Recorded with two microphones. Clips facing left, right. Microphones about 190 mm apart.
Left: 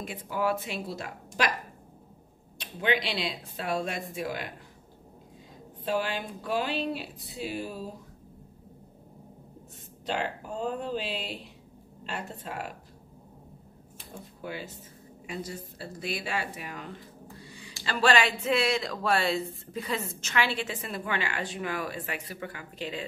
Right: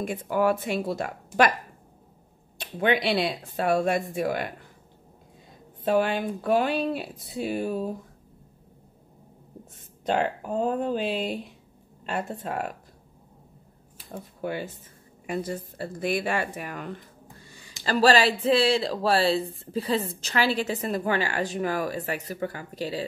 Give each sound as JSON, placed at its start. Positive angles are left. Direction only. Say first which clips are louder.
{"t": 0.0, "sound": "speech", "louder": "right 6 dB", "side_deg": -50}
{"t": 2.6, "sound": "speech", "louder": "right 5 dB", "side_deg": -50}
{"t": 5.9, "sound": "speech", "louder": "right 7 dB", "side_deg": -55}
{"t": 10.0, "sound": "speech", "louder": "right 6 dB", "side_deg": -50}
{"t": 14.1, "sound": "speech", "louder": "right 7 dB", "side_deg": -55}
{"t": 17.4, "sound": "a sound", "louder": "left 4 dB", "side_deg": -45}
{"t": 17.8, "sound": "speech", "louder": "right 5 dB", "side_deg": -35}